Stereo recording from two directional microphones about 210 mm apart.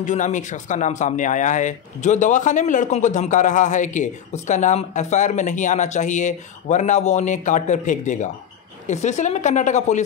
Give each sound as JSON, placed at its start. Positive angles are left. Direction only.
{"t": 0.0, "sound": "speech", "side_deg": 35}